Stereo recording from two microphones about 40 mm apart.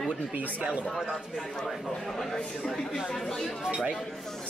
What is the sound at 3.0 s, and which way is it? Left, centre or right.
Speech, centre.